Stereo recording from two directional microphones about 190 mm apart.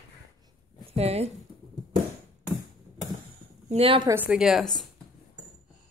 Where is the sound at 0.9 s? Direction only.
30° right (ahead or behind).